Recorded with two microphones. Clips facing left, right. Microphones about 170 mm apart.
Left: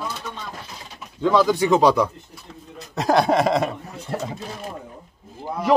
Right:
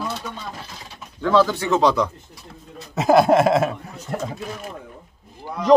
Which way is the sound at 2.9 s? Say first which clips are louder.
Right 3 dB; 5° right (ahead or behind).